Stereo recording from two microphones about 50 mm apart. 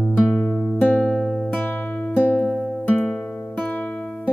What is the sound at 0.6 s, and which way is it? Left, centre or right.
Music, left.